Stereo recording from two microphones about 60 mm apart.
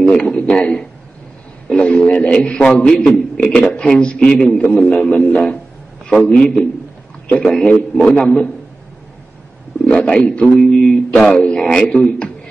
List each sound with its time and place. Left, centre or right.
0.0 s a man's voice: centre
7.5 s speech: centre
9.8 s speech: centre